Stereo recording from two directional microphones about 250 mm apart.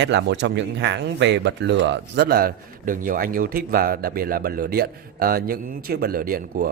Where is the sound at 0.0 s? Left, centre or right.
Right.